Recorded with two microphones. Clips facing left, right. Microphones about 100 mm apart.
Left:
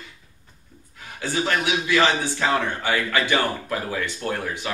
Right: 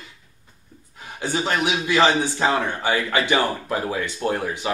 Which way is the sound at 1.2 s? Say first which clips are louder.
Right 1 dB; 20° right (ahead or behind).